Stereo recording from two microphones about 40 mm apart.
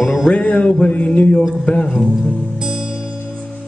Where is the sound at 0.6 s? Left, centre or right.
Left.